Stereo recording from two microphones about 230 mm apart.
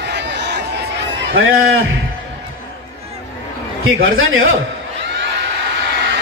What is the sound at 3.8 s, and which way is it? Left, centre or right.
Speech, right.